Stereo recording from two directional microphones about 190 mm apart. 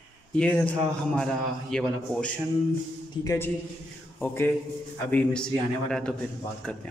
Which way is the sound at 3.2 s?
15° left (ahead or behind).